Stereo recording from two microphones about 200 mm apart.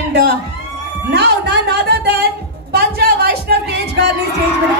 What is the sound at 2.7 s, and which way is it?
Music, 55° right (ahead or behind).